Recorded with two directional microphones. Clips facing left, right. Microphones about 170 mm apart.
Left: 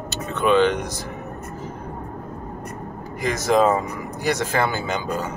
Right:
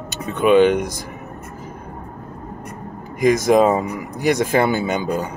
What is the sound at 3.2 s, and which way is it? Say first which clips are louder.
Speech: right 5 dB; 15° right (ahead or behind).